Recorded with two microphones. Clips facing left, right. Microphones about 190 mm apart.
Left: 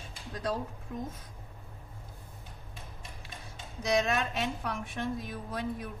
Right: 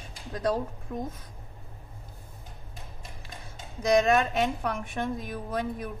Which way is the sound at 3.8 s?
50° right (ahead or behind).